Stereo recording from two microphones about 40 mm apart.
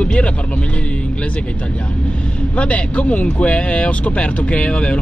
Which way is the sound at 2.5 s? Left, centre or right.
Left.